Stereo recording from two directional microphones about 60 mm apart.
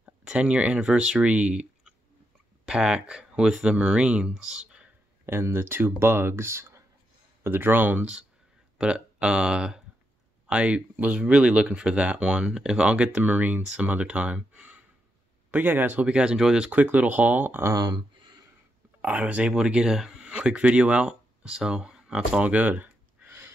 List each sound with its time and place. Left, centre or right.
0.2 s speech: centre
5.2 s speech: right
7.4 s speech: right
8.7 s speech: centre
15.5 s speech: right
16.1 s speech: centre
16.7 s speech: right
17.7 s a sound: right
18.9 s speech: right
22.5 s a sound: right